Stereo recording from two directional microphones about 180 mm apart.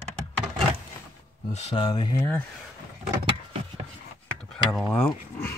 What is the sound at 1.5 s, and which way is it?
Speech, 35° left (ahead or behind).